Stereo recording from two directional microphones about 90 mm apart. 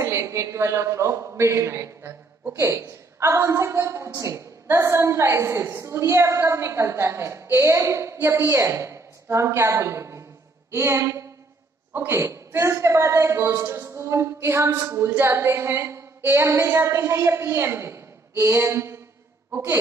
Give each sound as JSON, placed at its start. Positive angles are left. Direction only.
{"t": 0.0, "sound": "a man's voice", "side_deg": -30}